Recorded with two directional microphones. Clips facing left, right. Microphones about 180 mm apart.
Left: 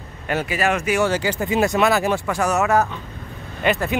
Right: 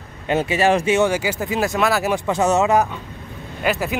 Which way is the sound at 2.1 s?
20° right (ahead or behind).